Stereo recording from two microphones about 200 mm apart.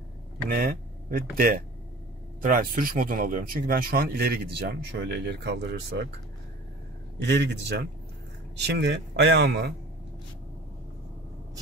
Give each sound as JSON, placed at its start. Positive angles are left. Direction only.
{"t": 0.5, "sound": "speech", "side_deg": -50}
{"t": 7.2, "sound": "speech", "side_deg": -60}